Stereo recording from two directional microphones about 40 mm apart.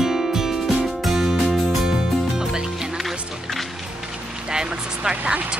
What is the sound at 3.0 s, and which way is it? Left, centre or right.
Music, centre.